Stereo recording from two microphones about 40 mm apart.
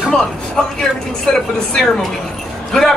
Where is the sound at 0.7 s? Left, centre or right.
Centre.